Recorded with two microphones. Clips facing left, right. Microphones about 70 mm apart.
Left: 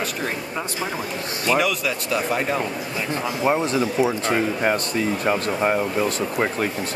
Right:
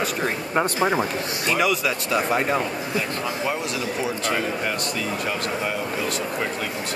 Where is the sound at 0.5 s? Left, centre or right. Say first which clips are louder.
Right 7 dB; right.